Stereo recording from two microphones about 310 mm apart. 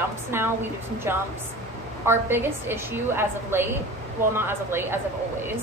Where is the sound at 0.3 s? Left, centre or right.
Centre.